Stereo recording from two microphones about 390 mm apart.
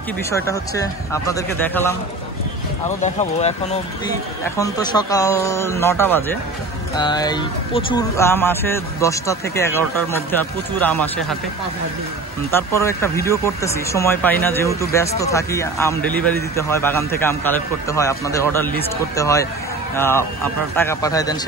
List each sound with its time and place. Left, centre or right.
0.3 s speech: centre
3.0 s speech: centre
12.4 s speech: centre